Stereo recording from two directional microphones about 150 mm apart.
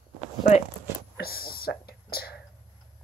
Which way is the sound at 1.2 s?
85° left.